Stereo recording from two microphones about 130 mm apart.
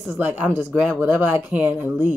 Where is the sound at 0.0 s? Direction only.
10° right (ahead or behind).